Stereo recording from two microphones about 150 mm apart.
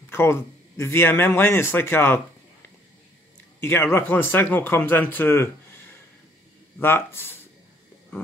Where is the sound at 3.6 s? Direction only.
15° left (ahead or behind).